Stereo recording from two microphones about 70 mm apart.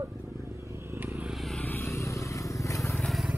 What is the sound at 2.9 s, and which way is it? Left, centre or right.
Vehicle, centre.